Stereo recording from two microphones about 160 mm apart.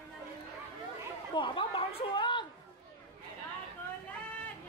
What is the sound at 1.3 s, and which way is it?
Speech, 30° left (ahead or behind).